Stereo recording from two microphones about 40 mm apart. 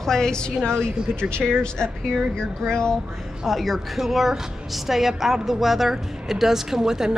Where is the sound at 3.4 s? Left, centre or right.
Centre.